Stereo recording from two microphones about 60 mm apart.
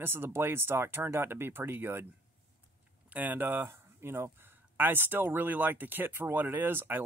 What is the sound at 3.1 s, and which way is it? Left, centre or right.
Speech, right.